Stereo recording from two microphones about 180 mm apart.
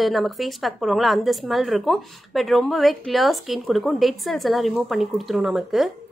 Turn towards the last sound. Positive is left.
turn(degrees=0)  # may be behind; listen again after turning